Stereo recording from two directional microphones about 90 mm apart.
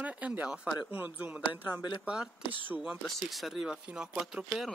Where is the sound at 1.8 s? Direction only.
60° left (ahead or behind).